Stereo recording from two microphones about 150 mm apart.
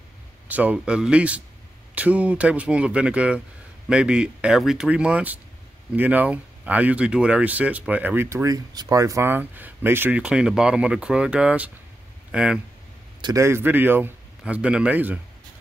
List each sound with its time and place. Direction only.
0.5 s speech: 10° right (ahead or behind)
13.2 s speech: 20° right (ahead or behind)